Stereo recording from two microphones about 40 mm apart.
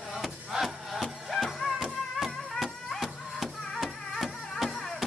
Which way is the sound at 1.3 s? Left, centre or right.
Centre.